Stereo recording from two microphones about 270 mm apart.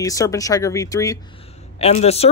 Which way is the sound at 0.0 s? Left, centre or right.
Centre.